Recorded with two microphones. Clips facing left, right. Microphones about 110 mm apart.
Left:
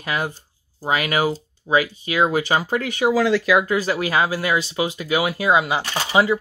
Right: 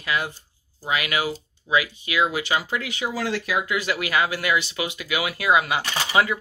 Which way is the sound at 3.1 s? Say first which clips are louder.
Left 9 dB; 90° left.